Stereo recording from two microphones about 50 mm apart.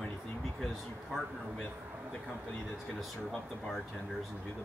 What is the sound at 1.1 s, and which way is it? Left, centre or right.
Speech, centre.